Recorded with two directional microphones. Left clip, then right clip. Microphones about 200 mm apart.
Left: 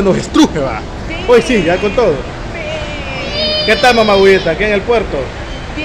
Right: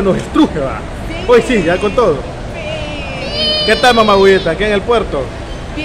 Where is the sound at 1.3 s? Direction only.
5° left (ahead or behind).